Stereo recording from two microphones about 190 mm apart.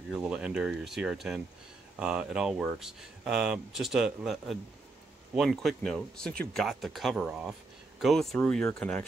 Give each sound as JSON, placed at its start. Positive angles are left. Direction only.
{"t": 0.1, "sound": "speech", "side_deg": -5}